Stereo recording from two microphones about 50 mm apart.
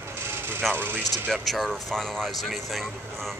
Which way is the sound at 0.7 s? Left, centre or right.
Right.